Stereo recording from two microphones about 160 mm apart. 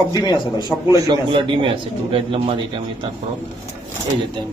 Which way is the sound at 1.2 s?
30° right (ahead or behind).